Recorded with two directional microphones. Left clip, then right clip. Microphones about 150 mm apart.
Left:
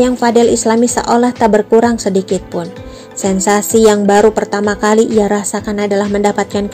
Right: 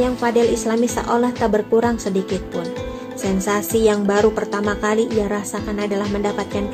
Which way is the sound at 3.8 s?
40° left (ahead or behind).